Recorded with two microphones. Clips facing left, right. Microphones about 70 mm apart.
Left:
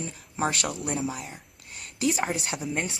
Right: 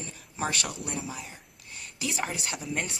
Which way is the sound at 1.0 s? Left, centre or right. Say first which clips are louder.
Left 7 dB; centre.